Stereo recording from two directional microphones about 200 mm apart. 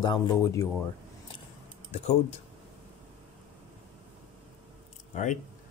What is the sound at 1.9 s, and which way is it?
Speech, 35° left (ahead or behind).